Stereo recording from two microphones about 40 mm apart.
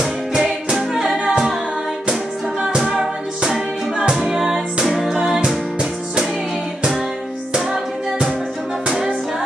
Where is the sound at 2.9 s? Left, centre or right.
Centre.